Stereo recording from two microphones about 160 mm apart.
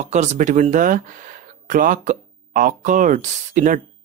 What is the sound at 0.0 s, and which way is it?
Speech, 45° right (ahead or behind).